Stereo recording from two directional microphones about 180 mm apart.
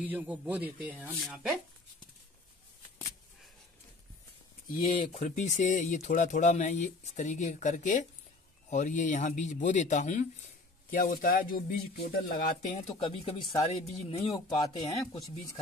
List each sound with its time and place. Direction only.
0.0 s speech: 10° right (ahead or behind)
4.9 s speech: 35° left (ahead or behind); by 12.5 s 60° left (ahead or behind)
13.0 s speech: 30° left (ahead or behind)